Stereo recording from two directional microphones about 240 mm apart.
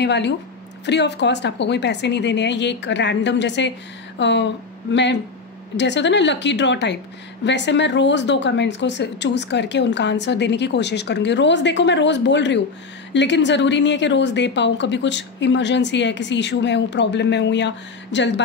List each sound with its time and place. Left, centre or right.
0.0 s a woman's voice: left
5.8 s a woman's voice: left